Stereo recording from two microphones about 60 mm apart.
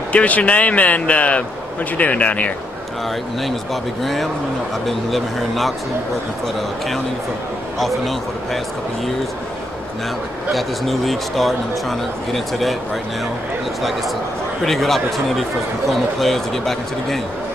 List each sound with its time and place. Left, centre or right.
0.1 s speech: left
4.0 s a man's voice: centre
7.8 s a man's voice: centre
10.5 s a man's voice: centre
14.6 s a man's voice: centre